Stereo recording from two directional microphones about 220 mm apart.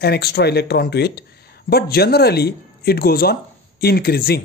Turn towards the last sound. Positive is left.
turn(degrees=45)  # may be behind; listen again after turning